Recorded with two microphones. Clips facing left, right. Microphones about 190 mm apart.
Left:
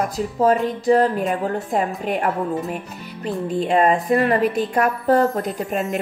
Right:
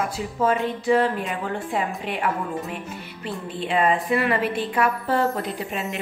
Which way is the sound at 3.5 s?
45° left (ahead or behind).